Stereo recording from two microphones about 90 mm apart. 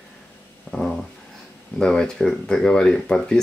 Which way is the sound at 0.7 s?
5° left (ahead or behind).